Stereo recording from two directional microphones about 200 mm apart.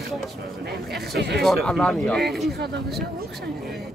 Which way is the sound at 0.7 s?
55° right (ahead or behind).